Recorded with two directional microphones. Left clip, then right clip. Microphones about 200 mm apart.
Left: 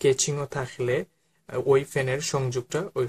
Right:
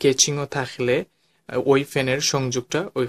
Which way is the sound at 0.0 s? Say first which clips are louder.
Right 4 dB; 35° right (ahead or behind).